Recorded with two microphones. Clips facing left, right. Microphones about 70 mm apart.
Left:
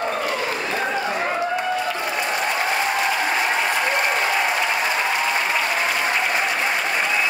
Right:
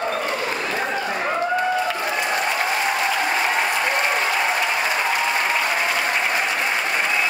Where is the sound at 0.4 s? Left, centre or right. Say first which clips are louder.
Even; centre.